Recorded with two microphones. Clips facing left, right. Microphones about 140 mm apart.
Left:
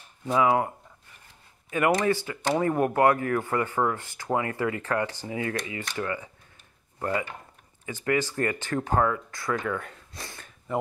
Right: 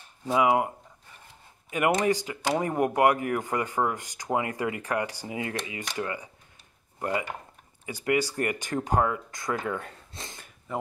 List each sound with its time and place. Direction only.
0.3 s speech: 15° right (ahead or behind)
1.7 s speech: 15° right (ahead or behind)
9.7 s a sound: 25° right (ahead or behind)